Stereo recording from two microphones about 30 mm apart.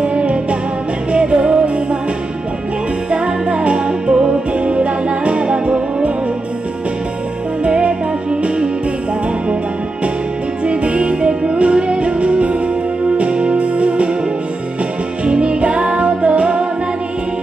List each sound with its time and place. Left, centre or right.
0.0 s music: right
3.1 s music: right
7.8 s music: right
10.6 s music: right
15.2 s music: right